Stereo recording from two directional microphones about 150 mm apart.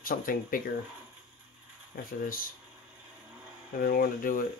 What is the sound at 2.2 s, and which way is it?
Speech, 65° left (ahead or behind).